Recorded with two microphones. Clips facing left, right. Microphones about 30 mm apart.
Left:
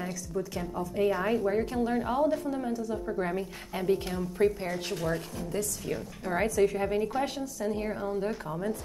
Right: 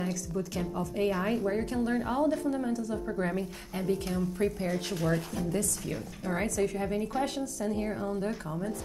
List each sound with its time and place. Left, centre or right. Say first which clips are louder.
0.6 s a woman's voice: left 1 dB; centre
1.1 s a woman's voice: left 2 dB; centre
3.8 s speech: left 3 dB; left
4.4 s a woman's voice: left 6 dB; centre
6.4 s a woman's voice: left 5 dB; centre
7.1 s a woman's voice: even; centre